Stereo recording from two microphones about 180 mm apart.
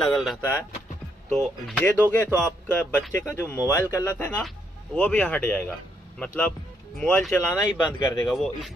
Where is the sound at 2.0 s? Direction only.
10° left (ahead or behind).